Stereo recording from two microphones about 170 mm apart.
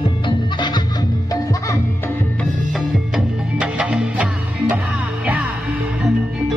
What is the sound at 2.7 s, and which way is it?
Music, 5° right (ahead or behind).